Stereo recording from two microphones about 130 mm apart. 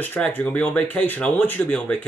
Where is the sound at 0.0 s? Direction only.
15° left (ahead or behind).